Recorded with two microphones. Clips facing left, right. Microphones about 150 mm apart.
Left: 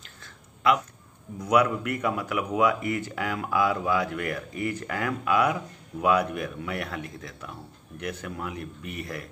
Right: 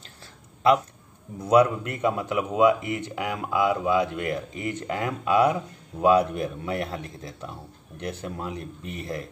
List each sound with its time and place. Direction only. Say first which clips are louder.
1.4 s speech: right 4 dB; 30° right (ahead or behind)